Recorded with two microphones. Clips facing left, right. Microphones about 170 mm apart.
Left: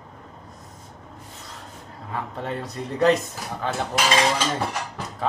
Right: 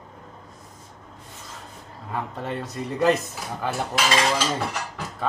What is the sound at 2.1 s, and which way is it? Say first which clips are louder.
Speech: even; centre (ahead or behind).